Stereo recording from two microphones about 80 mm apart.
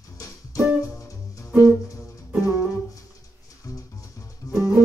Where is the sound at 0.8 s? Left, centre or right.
Left.